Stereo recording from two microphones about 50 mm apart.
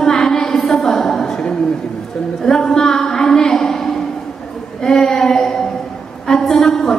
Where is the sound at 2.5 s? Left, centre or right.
Centre.